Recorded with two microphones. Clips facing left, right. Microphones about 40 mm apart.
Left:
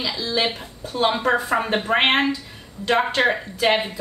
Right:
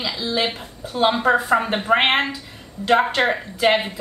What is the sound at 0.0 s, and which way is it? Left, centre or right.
Speech, centre.